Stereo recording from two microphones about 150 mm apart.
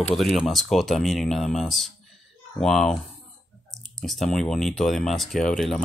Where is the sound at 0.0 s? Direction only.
Centre (ahead or behind).